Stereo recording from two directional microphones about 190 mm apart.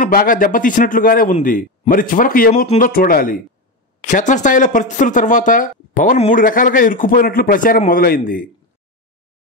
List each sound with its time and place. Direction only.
0.0 s speech: 50° left (ahead or behind)